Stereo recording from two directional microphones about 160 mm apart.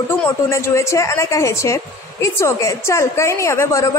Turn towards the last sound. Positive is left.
turn(degrees=20)  # may be behind; listen again after turning